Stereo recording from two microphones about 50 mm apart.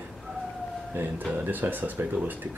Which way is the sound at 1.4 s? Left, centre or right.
Right.